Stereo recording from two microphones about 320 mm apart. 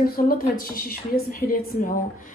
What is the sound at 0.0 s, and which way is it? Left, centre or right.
A woman's voice, left.